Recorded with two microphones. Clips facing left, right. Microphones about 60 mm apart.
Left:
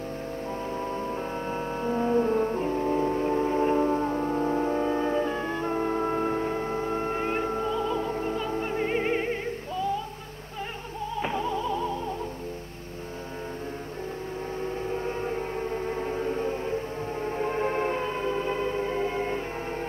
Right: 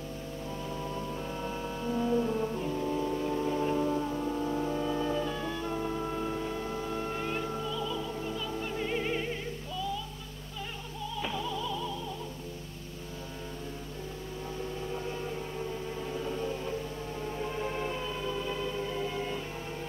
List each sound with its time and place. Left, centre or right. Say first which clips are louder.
0.7 s music: left 5 dB; left
11.1 s music: left 6 dB; left
14.6 s a sound: left 6 dB; left